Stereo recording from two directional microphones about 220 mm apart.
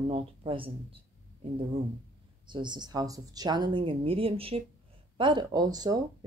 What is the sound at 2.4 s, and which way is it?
Speech, 20° right (ahead or behind).